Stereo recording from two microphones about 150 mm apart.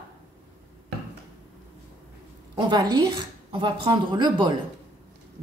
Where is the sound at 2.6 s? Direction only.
25° right (ahead or behind).